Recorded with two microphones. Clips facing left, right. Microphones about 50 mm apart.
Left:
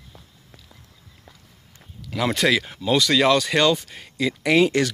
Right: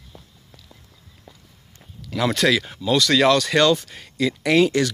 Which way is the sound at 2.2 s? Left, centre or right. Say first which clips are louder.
Right 1 dB; centre.